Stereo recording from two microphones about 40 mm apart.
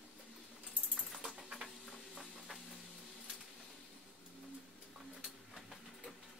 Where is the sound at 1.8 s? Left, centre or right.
Centre.